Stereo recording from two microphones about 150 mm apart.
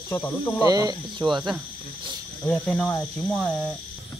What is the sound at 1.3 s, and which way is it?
Speech, centre (ahead or behind).